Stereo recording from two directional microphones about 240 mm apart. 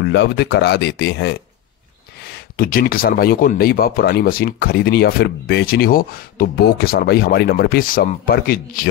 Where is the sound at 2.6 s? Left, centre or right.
Left.